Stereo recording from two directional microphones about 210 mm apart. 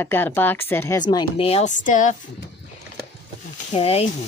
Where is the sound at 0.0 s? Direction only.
10° left (ahead or behind); by 2.1 s 35° left (ahead or behind).